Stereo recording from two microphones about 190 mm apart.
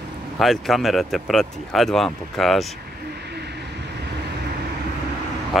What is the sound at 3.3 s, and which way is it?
Vehicle, 60° right (ahead or behind).